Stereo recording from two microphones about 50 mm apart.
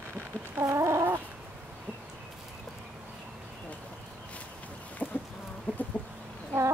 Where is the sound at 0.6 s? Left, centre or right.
Right.